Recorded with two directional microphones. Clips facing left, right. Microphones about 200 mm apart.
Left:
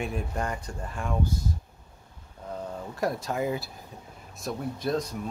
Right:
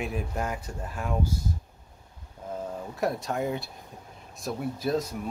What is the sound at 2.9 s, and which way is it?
Speech, centre (ahead or behind).